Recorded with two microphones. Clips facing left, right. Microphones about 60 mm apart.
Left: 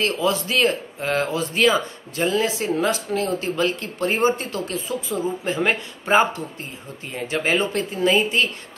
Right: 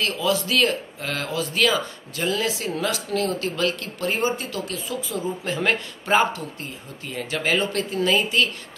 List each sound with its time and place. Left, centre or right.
0.0 s speech: left